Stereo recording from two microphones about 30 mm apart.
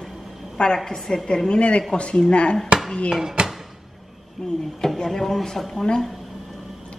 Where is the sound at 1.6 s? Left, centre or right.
Left.